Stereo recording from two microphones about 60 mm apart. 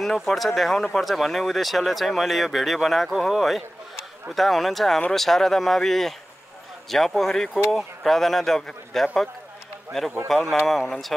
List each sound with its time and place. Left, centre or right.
0.0 s speech: centre